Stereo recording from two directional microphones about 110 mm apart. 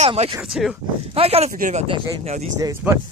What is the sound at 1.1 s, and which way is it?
Speech, 65° right (ahead or behind).